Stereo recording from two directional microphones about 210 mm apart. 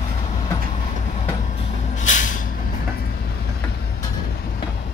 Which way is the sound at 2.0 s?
35° left (ahead or behind).